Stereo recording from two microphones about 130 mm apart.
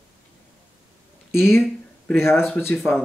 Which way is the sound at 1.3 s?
20° left (ahead or behind).